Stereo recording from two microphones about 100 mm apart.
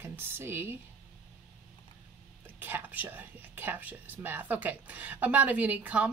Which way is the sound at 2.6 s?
20° right (ahead or behind).